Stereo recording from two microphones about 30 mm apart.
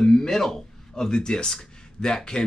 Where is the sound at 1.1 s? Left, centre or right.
Left.